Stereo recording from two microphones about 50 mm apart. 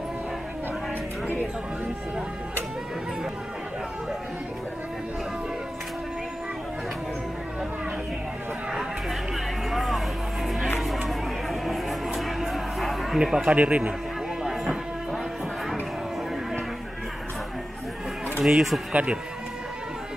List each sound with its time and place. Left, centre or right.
9.7 s music: centre
13.2 s speech: centre
13.6 s speech: right
14.4 s a sound: centre
18.4 s speech: centre